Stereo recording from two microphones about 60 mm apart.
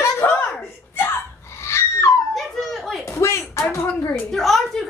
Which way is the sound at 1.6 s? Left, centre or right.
Left.